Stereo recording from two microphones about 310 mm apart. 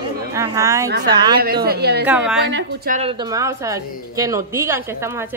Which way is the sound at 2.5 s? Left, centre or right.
Right.